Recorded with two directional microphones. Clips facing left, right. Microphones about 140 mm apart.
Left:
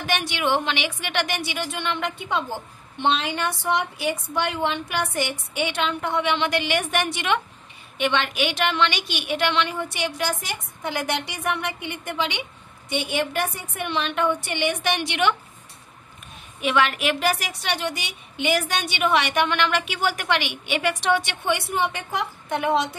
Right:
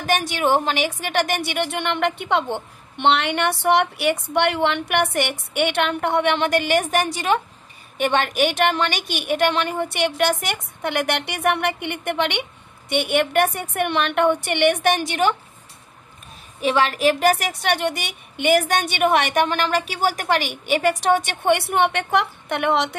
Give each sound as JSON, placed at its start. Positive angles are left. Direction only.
{"t": 0.0, "sound": "a woman's voice", "side_deg": -45}
{"t": 16.6, "sound": "a woman's voice", "side_deg": -35}